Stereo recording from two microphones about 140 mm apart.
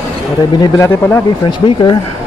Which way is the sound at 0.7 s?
15° left (ahead or behind).